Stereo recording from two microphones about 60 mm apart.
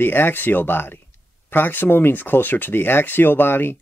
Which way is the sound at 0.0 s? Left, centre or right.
Left.